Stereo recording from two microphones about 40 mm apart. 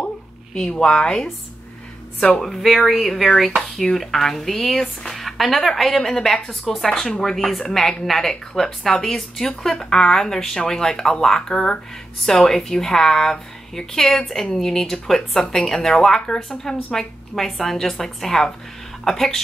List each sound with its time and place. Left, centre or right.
0.8 s a woman's voice: left
2.4 s speech: centre
7.1 s a woman's voice: centre
7.3 s a woman's voice: centre